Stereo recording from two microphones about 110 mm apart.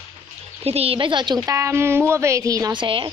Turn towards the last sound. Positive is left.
turn(degrees=-50)  # may be behind; listen again after turning